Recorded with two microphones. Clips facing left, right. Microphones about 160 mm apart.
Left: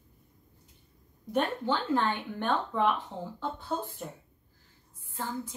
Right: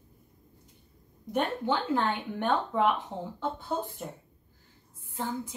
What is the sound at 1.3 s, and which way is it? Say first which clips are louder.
Speech: even; 15° right (ahead or behind).